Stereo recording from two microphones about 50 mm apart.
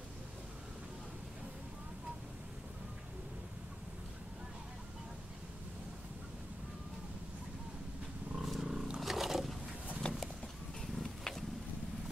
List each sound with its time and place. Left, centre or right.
8.4 s wild animals: centre
9.0 s roaring cats: centre
10.0 s a sound: left
11.0 s wild animals: centre